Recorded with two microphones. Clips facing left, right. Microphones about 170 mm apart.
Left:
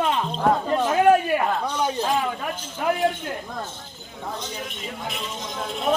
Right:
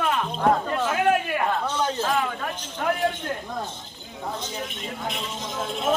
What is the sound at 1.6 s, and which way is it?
Speech, 15° left (ahead or behind).